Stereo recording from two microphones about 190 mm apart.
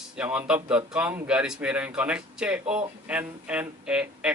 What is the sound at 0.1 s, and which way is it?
A man's voice, 5° right (ahead or behind).